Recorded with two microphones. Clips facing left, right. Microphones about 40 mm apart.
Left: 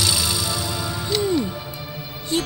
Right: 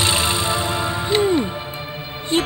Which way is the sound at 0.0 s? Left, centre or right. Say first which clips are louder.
Right 4 dB; right.